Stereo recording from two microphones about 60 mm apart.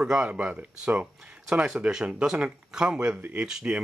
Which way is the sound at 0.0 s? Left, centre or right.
Centre.